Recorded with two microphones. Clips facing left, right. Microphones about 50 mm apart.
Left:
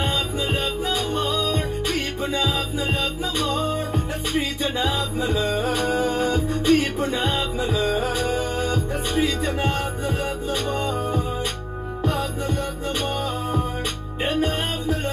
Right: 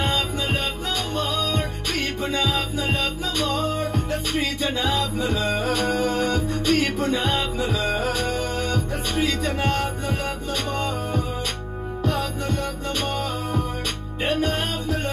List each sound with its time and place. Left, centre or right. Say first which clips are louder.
1.4 s music: left 2 dB; centre
3.3 s music: even; centre
7.2 s music: even; centre
12.0 s music: left 1 dB; centre
14.2 s music: even; left